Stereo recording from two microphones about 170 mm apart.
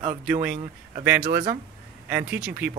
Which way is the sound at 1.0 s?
10° right (ahead or behind).